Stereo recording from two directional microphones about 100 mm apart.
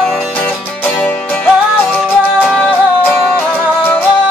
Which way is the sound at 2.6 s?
15° left (ahead or behind).